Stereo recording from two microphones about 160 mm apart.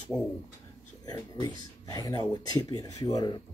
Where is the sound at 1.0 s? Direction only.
25° left (ahead or behind).